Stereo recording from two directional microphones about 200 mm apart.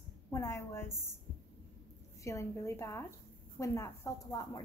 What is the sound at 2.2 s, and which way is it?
A woman's voice, 15° left (ahead or behind).